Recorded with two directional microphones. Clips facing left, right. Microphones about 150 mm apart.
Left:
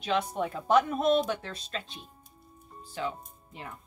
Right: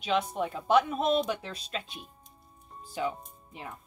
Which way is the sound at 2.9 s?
15° right (ahead or behind).